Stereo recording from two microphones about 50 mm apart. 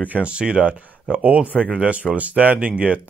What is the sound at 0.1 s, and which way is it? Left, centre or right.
A man's voice, right.